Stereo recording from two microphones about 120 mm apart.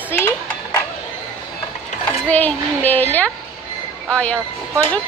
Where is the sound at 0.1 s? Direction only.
20° left (ahead or behind).